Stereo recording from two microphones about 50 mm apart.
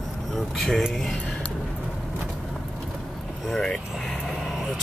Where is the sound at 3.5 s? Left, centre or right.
Centre.